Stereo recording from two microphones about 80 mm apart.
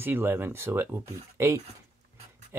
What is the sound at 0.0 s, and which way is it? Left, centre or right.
Speech, right.